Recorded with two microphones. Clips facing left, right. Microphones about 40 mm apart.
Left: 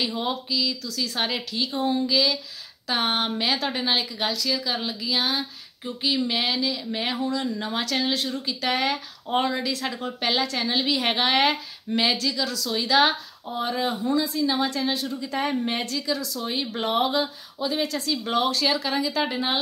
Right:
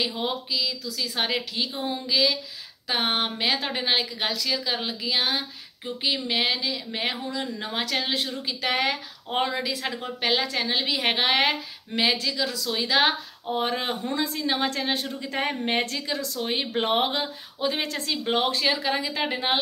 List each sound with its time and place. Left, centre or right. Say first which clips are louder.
0.0 s a woman's voice: left 1 dB; centre
13.5 s a woman's voice: even; right